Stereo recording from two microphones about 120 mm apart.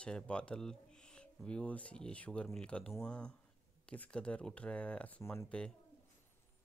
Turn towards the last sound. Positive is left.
turn(degrees=10)  # may be behind; listen again after turning